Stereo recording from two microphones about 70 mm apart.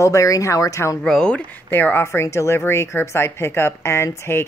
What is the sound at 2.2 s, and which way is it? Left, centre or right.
Speech, left.